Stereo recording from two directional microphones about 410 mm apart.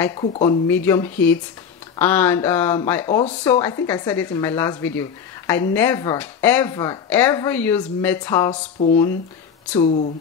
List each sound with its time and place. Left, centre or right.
0.0 s speech: centre